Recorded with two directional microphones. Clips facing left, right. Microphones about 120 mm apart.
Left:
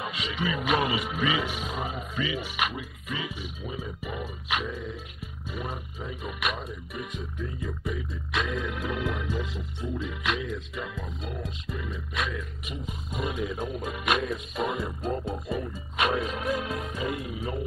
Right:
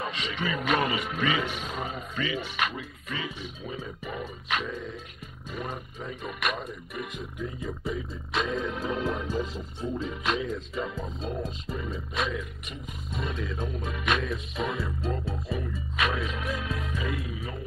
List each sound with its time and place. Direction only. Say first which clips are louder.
0.0 s speech: left 1 dB; 10° left (ahead or behind)
7.6 s music: right 1 dB; 30° right (ahead or behind)
13.1 s speech: left 3 dB; 10° left (ahead or behind)
14.7 s music: left 1 dB; 20° left (ahead or behind)